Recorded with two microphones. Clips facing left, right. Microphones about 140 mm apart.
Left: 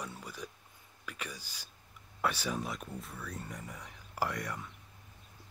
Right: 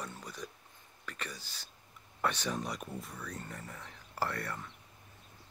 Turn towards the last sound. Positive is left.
turn(degrees=10)  # may be behind; listen again after turning